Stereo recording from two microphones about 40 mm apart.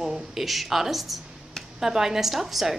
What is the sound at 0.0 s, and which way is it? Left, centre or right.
A woman's voice, centre.